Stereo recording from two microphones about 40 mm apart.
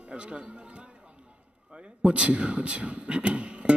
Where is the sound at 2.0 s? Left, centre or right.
Right.